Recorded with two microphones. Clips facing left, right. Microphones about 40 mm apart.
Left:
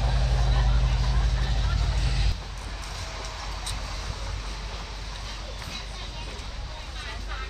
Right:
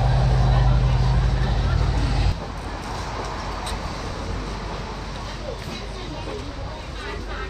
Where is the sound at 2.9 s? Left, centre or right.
Right.